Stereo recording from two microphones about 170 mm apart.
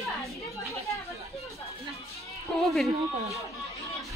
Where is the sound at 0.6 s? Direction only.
15° left (ahead or behind).